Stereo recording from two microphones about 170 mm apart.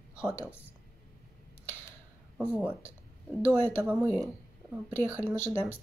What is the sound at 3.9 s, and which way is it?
Speech, 10° right (ahead or behind).